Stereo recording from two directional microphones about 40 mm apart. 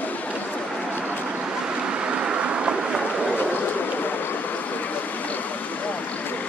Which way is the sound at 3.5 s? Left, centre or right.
Left.